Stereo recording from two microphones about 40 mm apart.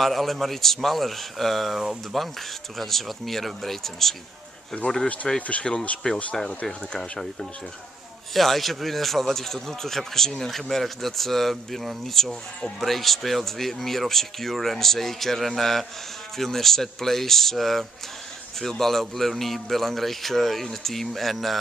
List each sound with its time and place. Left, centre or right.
0.0 s a man's voice: centre
5.0 s a man's voice: left; by 21.5 s centre